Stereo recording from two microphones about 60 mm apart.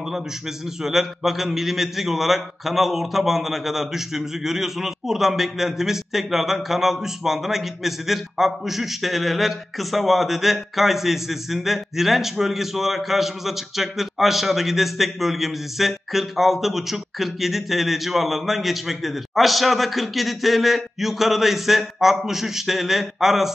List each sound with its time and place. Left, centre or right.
0.8 s a man's voice: centre